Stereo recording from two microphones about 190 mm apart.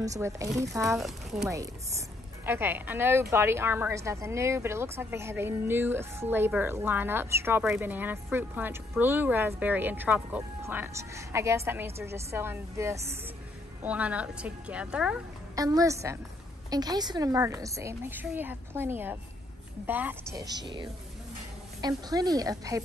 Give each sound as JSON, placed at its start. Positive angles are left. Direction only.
{"t": 0.6, "sound": "a woman's voice", "side_deg": -15}
{"t": 0.9, "sound": "a woman's voice", "side_deg": 0}
{"t": 15.5, "sound": "a woman's voice", "side_deg": -20}
{"t": 20.3, "sound": "speech", "side_deg": -20}
{"t": 21.8, "sound": "speech", "side_deg": -20}